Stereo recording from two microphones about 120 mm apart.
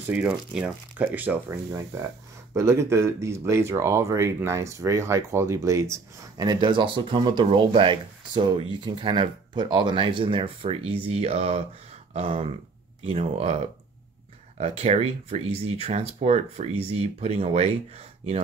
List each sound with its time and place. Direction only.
0.1 s speech: 10° right (ahead or behind); by 11.6 s 60° right (ahead or behind)
12.1 s a sound: 60° right (ahead or behind)
13.0 s speech: 65° right (ahead or behind)
14.6 s speech: 65° right (ahead or behind)